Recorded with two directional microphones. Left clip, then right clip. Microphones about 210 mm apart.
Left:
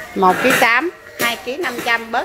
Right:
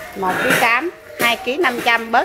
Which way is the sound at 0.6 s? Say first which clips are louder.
Left 2 dB; 20° left (ahead or behind).